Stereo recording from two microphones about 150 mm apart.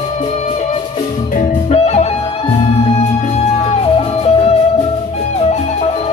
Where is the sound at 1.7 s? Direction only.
45° left (ahead or behind).